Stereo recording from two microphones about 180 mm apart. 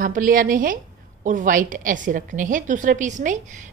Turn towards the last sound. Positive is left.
turn(degrees=-45)  # may be behind; listen again after turning